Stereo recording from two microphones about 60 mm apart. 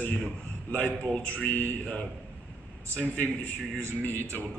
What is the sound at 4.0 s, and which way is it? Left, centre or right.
Speech, left.